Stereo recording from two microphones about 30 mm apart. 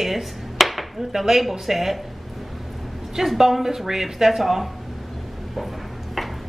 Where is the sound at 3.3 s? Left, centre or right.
Centre.